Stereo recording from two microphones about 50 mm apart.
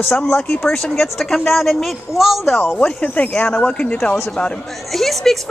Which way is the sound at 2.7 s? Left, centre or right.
Left.